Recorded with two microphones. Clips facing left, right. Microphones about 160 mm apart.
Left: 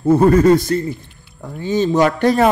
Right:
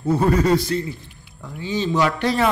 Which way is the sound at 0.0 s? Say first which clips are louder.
Left 7 dB; 45° left (ahead or behind).